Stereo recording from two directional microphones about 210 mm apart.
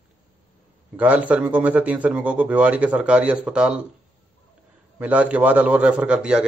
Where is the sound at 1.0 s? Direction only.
5° right (ahead or behind).